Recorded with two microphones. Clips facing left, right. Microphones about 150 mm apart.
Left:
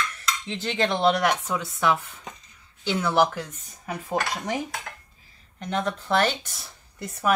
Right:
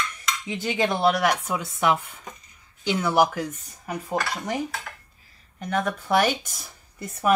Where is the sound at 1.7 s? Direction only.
Centre (ahead or behind).